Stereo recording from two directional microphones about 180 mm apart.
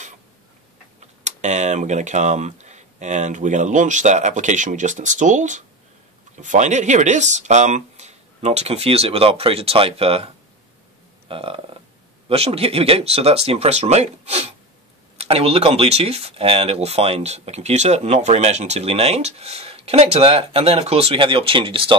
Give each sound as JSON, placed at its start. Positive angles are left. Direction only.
{"t": 1.2, "sound": "speech", "side_deg": -40}